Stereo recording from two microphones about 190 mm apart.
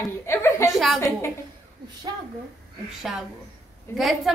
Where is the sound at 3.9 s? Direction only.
Centre (ahead or behind).